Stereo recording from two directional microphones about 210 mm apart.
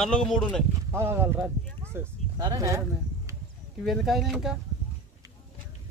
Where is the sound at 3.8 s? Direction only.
Centre (ahead or behind).